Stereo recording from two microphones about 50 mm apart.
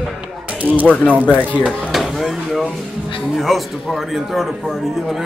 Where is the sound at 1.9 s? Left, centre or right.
Centre.